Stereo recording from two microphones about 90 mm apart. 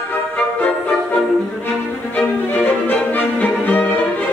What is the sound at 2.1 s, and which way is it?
Music, 15° left (ahead or behind).